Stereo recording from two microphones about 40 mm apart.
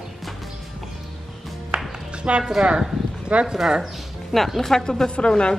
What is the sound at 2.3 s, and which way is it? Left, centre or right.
Speech, right.